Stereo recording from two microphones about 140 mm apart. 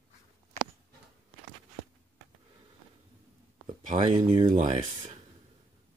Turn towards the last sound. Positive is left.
turn(degrees=-60)  # may be behind; listen again after turning